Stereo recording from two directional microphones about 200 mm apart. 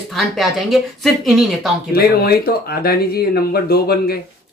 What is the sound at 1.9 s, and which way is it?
Speech, 50° left (ahead or behind).